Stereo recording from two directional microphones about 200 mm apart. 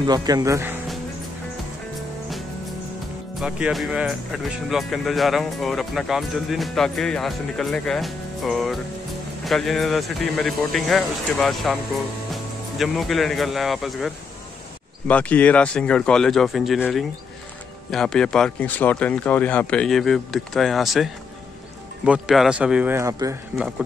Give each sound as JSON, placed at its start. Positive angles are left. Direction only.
{"t": 0.0, "sound": "speech", "side_deg": -20}
{"t": 3.3, "sound": "speech", "side_deg": -5}